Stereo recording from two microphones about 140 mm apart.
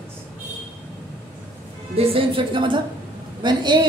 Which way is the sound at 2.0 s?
40° right (ahead or behind).